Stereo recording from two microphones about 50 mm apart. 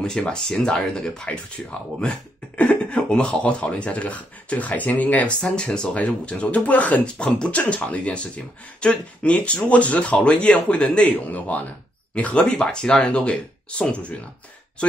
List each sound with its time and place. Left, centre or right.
0.3 s speech: centre; by 5.3 s left
5.4 s speech: centre
7.2 s speech: centre